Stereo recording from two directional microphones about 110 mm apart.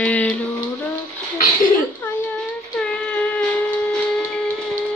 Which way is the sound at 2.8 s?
10° left (ahead or behind).